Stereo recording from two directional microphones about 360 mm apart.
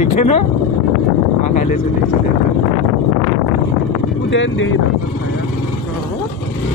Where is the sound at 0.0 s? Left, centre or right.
Centre.